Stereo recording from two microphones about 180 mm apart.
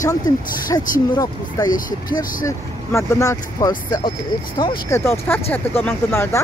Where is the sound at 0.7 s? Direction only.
20° left (ahead or behind).